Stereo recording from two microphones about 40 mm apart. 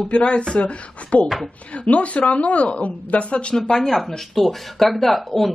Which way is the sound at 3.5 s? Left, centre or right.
Centre.